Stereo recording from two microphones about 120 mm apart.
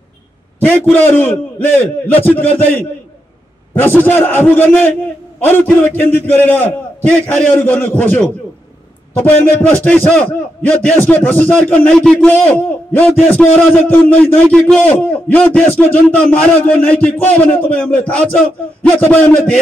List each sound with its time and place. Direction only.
0.6 s a man's voice: 15° left (ahead or behind)